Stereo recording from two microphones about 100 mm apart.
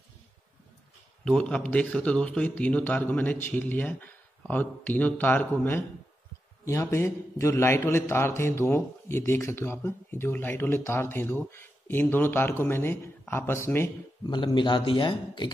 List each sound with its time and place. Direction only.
1.2 s a man's voice: 10° left (ahead or behind)
14.2 s speech: 50° left (ahead or behind)